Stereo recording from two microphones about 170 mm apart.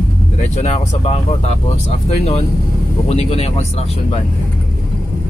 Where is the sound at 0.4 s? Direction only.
40° left (ahead or behind).